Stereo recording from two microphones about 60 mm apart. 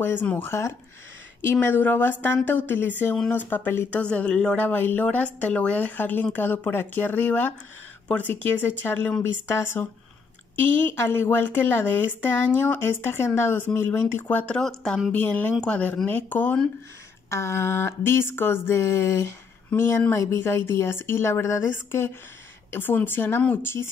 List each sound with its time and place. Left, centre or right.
0.0 s a woman's voice: left; by 4.6 s centre
4.6 s a woman's voice: left
9.5 s a woman's voice: left
14.6 s speech: centre
15.1 s a woman's voice: left
17.3 s speech: left
22.7 s a woman's voice: left